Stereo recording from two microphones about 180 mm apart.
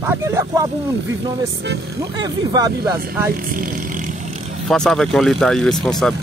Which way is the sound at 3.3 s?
50° right (ahead or behind).